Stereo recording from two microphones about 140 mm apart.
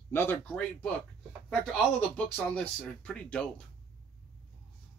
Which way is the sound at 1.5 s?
Centre (ahead or behind).